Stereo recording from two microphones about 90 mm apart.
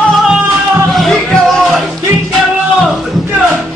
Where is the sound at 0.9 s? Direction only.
Centre (ahead or behind).